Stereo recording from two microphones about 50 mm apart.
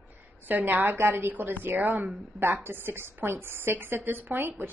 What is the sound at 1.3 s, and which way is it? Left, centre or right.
A woman's voice, right.